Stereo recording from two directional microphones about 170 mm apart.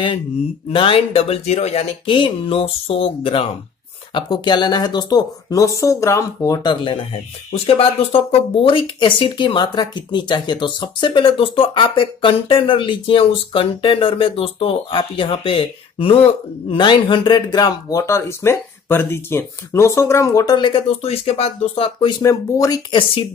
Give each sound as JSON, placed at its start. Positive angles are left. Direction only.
{"t": 0.7, "sound": "speech", "side_deg": 30}
{"t": 22.2, "sound": "speech", "side_deg": 20}